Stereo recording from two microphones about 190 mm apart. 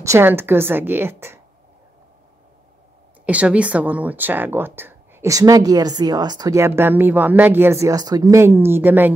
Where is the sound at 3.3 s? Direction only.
5° right (ahead or behind).